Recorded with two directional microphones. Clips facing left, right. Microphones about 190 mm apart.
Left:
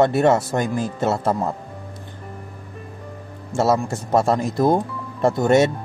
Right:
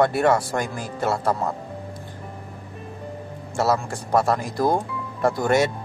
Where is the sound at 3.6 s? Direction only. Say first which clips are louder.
Left 3 dB; 25° left (ahead or behind).